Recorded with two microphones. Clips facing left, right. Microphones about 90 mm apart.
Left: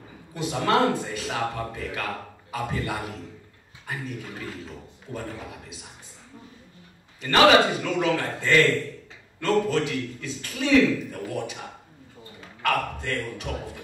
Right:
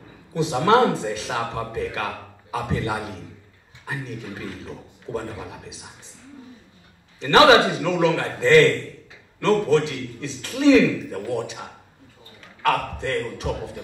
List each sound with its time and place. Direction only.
0.4 s a man's voice: 25° right (ahead or behind)
5.1 s a man's voice: 25° right (ahead or behind)
7.2 s a man's voice: 25° right (ahead or behind)
12.6 s a man's voice: 25° right (ahead or behind)